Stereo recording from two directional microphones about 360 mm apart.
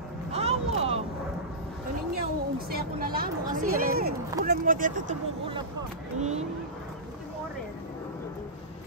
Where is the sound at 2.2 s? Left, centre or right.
Right.